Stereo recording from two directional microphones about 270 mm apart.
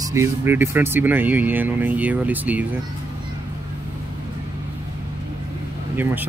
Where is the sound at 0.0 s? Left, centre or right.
Centre.